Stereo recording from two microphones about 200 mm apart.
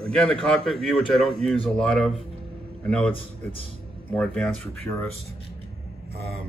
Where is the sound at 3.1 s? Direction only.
25° left (ahead or behind).